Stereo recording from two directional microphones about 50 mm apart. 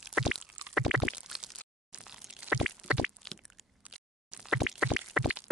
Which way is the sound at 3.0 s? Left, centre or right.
Centre.